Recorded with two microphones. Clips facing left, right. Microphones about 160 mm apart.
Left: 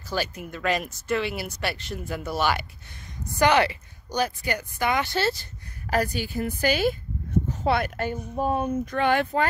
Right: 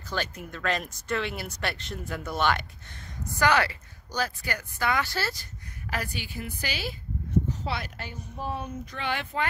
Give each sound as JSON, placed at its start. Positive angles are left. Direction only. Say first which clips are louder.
{"t": 0.1, "sound": "speech", "louder": "left 4 dB", "side_deg": 5}
{"t": 3.3, "sound": "speech", "louder": "left 4 dB", "side_deg": 20}
{"t": 5.9, "sound": "speech", "louder": "left 9 dB", "side_deg": 40}